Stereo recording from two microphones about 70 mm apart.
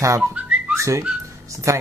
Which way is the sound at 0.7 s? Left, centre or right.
Right.